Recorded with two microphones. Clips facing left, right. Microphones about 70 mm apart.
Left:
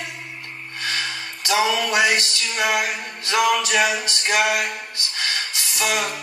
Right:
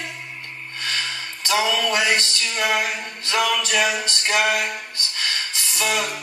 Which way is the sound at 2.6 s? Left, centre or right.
Centre.